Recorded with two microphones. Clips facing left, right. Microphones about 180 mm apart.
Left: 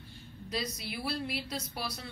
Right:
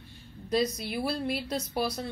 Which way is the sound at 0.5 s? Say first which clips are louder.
Right 9 dB; 45° right (ahead or behind).